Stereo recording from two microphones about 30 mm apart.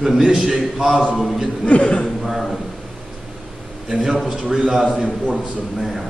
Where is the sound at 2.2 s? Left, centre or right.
Centre.